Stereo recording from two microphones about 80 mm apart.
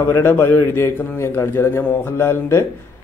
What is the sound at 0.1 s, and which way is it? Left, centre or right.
A man's voice, left.